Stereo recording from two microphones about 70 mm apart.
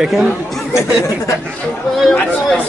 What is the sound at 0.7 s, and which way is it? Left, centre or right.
Speech, left.